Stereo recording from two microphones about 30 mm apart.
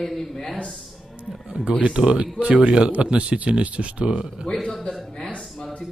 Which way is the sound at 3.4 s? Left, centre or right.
Right.